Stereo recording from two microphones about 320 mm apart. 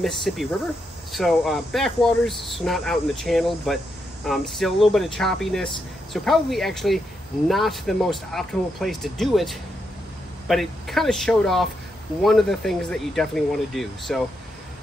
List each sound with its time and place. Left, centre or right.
0.0 s speech: centre